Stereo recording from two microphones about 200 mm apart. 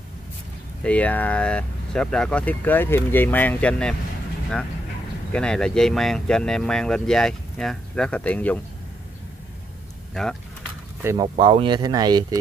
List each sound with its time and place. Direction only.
0.8 s speech: 5° left (ahead or behind)
5.3 s speech: 5° left (ahead or behind)
10.2 s speech: centre (ahead or behind)
11.0 s speech: 15° right (ahead or behind)
11.3 s speech: 25° right (ahead or behind)